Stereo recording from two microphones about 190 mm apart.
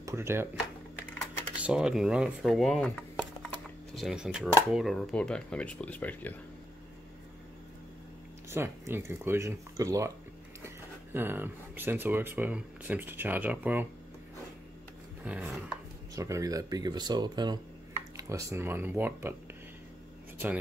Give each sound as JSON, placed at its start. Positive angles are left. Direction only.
{"t": 0.0, "sound": "speech", "side_deg": -15}
{"t": 1.5, "sound": "speech", "side_deg": -5}
{"t": 8.5, "sound": "speech", "side_deg": -10}
{"t": 11.1, "sound": "speech", "side_deg": -10}
{"t": 15.2, "sound": "speech", "side_deg": -10}